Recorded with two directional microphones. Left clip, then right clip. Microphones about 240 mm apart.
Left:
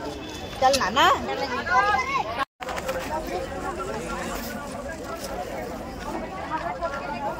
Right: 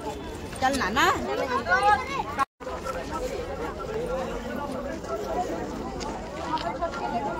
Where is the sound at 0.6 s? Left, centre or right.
Left.